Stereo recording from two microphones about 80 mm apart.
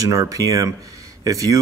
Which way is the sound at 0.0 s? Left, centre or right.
Right.